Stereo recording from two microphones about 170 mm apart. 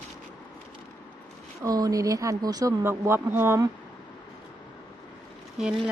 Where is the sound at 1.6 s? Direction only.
20° right (ahead or behind).